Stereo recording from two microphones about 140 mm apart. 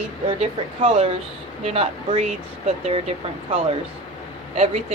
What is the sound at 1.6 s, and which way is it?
Speech, 45° right (ahead or behind).